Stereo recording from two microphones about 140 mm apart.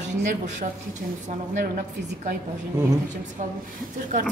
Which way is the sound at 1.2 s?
65° right (ahead or behind).